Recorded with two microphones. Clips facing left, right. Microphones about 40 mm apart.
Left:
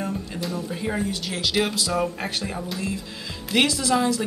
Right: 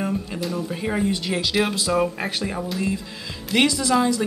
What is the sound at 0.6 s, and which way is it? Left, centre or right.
Speech, centre.